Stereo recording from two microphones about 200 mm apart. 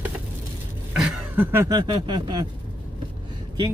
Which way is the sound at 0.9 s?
5° right (ahead or behind).